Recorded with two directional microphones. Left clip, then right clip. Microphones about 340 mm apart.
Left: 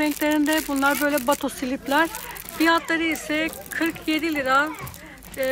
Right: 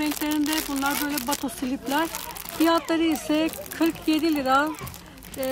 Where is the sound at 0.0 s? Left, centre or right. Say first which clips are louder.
Left 4 dB; centre.